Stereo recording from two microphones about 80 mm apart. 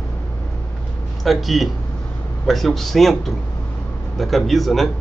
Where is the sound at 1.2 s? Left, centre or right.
Centre.